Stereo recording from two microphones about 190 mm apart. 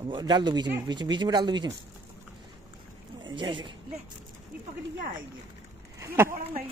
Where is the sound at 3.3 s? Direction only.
25° right (ahead or behind).